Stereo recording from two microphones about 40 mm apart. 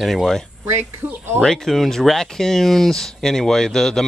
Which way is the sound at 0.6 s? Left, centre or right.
Right.